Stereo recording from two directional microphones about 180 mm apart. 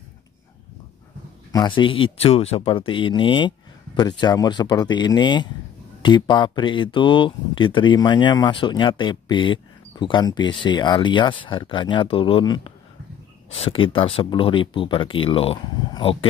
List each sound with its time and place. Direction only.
1.5 s speech: 25° left (ahead or behind)